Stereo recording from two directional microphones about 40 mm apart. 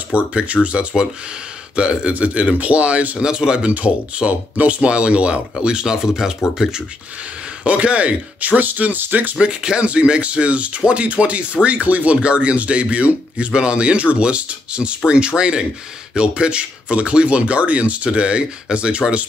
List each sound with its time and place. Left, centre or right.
0.1 s speech: right
3.2 s speech: right
3.7 s speech: right; by 6.8 s centre
7.6 s speech: right
9.4 s speech: right